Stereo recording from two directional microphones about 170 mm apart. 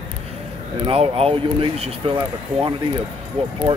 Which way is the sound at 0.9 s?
35° right (ahead or behind).